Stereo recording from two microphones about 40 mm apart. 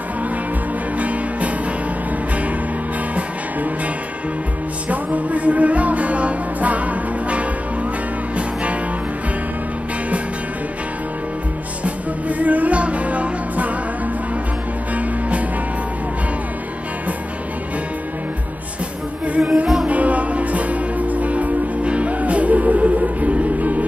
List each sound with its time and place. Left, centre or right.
0.9 s music: right
4.8 s music: right
11.8 s music: right
15.0 s music: right
19.2 s music: right